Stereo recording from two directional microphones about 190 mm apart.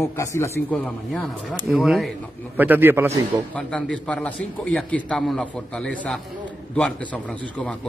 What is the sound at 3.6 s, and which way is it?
A man's voice, 5° left (ahead or behind).